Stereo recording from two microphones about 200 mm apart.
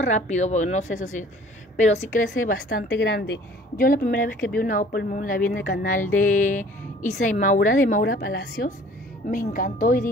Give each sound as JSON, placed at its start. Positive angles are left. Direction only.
{"t": 0.0, "sound": "a woman's voice", "side_deg": 35}
{"t": 3.0, "sound": "a woman's voice", "side_deg": 60}